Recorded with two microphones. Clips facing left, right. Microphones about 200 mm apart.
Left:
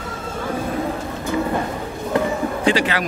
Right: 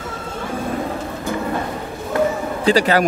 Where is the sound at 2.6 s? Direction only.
40° right (ahead or behind).